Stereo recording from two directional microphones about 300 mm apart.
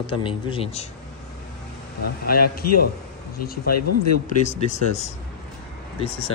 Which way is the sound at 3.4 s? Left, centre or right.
Left.